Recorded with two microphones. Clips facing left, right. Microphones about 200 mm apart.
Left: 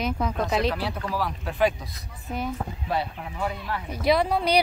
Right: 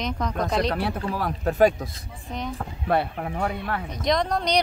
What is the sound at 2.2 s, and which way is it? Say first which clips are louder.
Speech: left 2 dB; 5° left (ahead or behind).